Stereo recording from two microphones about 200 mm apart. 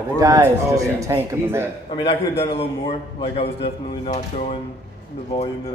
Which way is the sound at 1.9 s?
30° left (ahead or behind).